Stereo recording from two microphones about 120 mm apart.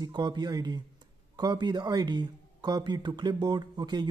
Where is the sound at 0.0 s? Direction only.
35° right (ahead or behind).